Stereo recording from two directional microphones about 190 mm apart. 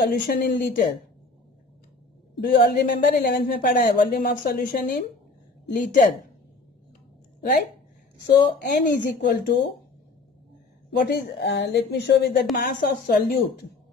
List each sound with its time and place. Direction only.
0.0 s speech: 50° left (ahead or behind)
2.4 s speech: 55° left (ahead or behind)
8.8 s a woman's voice: 55° left (ahead or behind)
11.0 s a woman's voice: 60° left (ahead or behind)